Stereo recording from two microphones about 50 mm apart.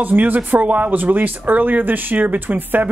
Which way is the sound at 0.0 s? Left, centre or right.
Right.